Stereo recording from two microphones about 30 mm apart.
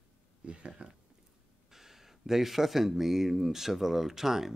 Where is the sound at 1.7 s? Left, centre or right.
Centre.